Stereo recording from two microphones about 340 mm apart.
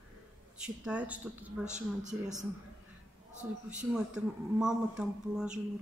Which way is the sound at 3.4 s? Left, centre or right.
Centre.